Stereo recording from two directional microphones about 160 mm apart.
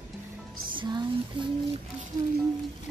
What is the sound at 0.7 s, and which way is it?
Music, 30° right (ahead or behind).